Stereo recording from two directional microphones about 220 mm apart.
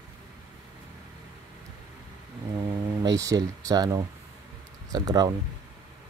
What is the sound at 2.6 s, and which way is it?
Speech, 15° right (ahead or behind).